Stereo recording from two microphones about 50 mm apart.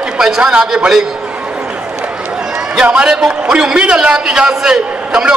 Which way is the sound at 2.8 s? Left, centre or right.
Right.